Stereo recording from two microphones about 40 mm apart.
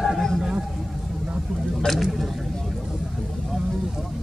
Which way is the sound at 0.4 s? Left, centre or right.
Centre.